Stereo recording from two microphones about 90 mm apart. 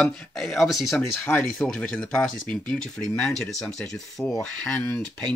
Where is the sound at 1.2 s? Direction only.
25° left (ahead or behind).